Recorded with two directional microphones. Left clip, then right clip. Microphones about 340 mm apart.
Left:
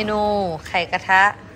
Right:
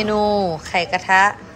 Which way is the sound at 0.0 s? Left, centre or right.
Centre.